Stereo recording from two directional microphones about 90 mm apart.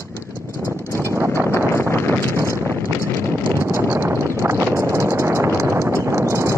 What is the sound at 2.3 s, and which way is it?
Wind noise, 35° right (ahead or behind).